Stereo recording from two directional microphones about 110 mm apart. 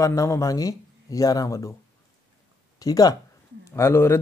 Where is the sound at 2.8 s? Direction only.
35° left (ahead or behind).